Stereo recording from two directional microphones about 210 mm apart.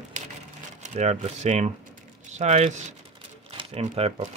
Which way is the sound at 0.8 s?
35° right (ahead or behind).